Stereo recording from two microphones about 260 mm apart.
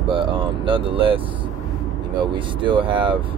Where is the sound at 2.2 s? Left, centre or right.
Centre.